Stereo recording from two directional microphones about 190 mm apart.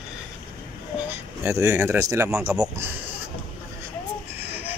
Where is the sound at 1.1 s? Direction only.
15° right (ahead or behind).